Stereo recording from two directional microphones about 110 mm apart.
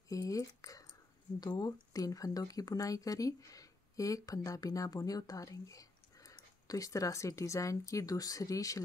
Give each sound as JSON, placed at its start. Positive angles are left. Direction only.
{"t": 0.1, "sound": "speech", "side_deg": 30}